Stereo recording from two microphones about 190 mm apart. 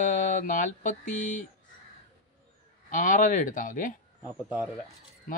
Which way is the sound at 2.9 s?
40° left (ahead or behind).